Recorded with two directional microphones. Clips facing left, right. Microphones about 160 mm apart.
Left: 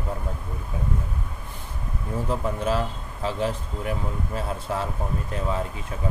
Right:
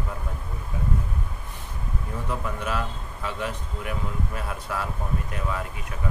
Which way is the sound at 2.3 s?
30° left (ahead or behind).